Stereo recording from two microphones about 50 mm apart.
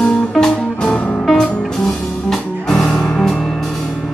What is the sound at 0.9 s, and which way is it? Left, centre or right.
Music, left.